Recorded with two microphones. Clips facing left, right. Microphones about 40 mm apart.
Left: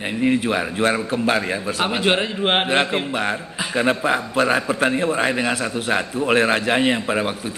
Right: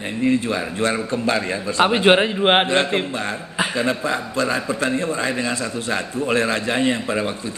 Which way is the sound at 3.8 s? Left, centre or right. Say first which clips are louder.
Left 6 dB; left.